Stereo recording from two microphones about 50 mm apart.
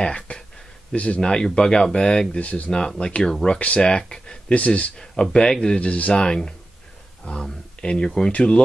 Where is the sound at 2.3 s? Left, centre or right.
Left.